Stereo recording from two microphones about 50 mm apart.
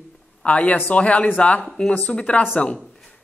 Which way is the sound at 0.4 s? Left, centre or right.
Left.